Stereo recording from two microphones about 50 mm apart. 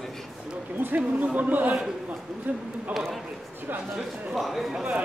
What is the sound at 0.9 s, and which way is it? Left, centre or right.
A man's voice, right.